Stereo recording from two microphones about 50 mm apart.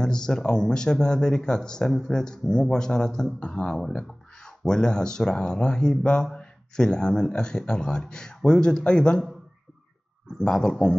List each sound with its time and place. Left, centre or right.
0.0 s speech: centre
10.4 s speech: centre